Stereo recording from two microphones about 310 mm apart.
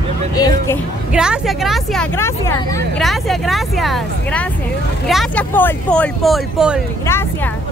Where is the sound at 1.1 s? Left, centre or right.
Centre.